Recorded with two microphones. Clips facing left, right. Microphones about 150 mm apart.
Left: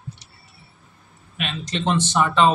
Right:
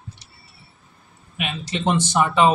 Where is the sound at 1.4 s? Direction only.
10° right (ahead or behind).